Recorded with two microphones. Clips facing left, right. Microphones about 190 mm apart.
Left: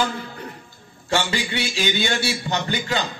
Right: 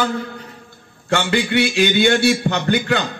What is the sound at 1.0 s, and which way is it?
A man's voice, 60° right (ahead or behind).